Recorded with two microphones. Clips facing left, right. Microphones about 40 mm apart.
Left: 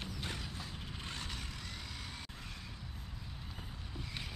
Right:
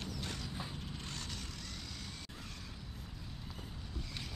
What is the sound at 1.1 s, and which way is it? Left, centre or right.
Vehicle, centre.